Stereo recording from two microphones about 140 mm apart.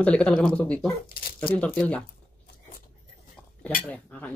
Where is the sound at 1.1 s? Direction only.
90° left.